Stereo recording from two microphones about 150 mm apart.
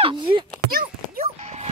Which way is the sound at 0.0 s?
35° right (ahead or behind).